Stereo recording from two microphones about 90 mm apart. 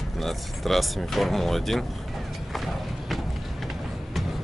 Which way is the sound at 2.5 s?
Centre (ahead or behind).